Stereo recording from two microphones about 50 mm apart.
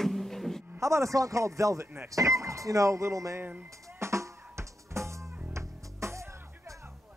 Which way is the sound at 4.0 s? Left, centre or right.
Right.